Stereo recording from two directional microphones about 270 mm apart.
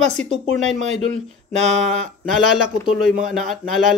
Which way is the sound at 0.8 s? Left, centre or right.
Right.